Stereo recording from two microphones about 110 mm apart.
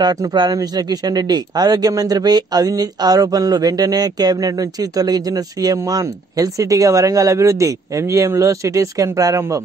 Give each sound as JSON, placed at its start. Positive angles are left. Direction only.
{"t": 0.0, "sound": "speech", "side_deg": -35}